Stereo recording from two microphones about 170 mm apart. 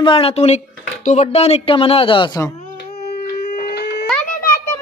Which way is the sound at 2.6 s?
70° left (ahead or behind).